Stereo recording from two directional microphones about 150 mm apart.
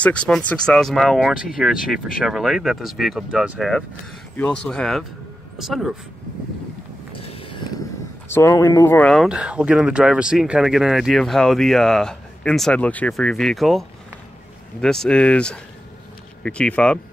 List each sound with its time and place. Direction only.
0.0 s speech: 10° left (ahead or behind)
7.2 s a sound: 35° left (ahead or behind)
8.3 s speech: 20° left (ahead or behind)
9.1 s speech: 5° right (ahead or behind)